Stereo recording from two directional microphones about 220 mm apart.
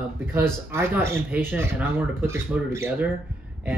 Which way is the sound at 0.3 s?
10° right (ahead or behind).